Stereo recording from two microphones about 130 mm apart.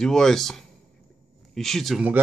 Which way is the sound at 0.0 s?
5° left (ahead or behind).